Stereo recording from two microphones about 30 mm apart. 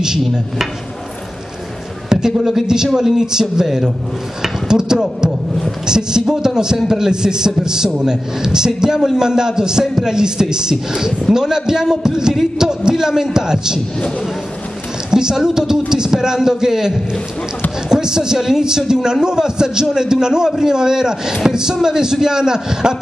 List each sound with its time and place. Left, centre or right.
2.0 s a sound: centre
2.6 s a man's voice: right
15.0 s a man's voice: right